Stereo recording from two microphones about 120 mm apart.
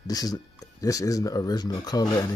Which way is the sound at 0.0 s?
30° left (ahead or behind).